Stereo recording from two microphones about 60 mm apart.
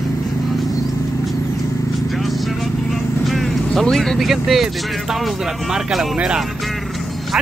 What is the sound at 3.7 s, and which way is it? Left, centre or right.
Speech, centre.